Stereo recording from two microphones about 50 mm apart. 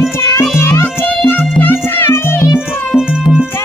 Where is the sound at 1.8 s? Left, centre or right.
Left.